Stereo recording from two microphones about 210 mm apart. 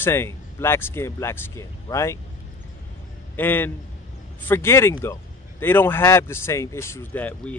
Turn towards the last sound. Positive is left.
turn(degrees=10)  # may be behind; listen again after turning